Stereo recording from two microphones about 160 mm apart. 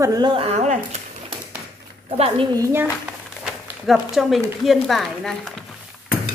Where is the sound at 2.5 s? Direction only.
15° right (ahead or behind).